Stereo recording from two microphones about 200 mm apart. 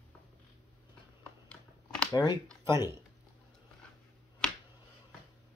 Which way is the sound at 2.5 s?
15° right (ahead or behind).